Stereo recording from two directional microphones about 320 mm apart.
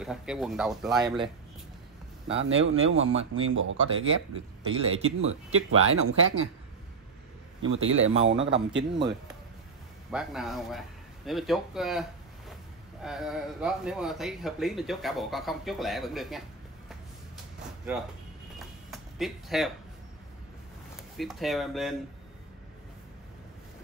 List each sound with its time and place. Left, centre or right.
0.0 s speech: centre
2.4 s a man's voice: right
7.6 s a man's voice: right
10.1 s speech: centre
18.9 s a sound: centre
21.2 s speech: centre